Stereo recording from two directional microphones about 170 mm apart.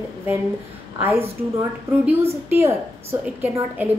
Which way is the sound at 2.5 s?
15° right (ahead or behind).